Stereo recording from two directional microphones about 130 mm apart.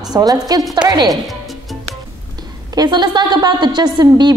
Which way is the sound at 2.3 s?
30° right (ahead or behind).